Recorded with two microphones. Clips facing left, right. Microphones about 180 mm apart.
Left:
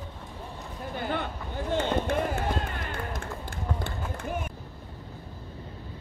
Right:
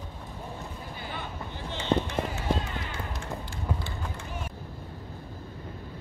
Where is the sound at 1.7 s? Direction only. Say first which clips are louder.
Left 1 dB; 50° left (ahead or behind).